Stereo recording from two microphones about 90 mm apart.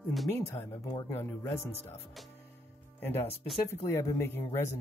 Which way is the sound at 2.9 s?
25° left (ahead or behind).